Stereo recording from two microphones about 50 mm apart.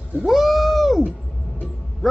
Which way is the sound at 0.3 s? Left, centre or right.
Centre.